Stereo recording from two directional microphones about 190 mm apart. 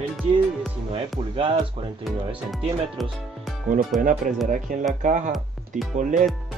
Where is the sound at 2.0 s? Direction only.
Centre (ahead or behind).